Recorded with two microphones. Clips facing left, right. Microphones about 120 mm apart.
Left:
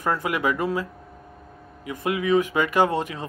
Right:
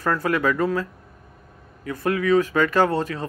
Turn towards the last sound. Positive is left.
turn(degrees=15)  # may be behind; listen again after turning